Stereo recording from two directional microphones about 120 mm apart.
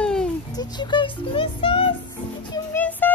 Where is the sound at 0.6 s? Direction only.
40° left (ahead or behind).